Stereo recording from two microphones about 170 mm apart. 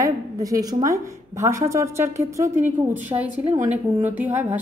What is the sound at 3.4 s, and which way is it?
Speech, 40° right (ahead or behind).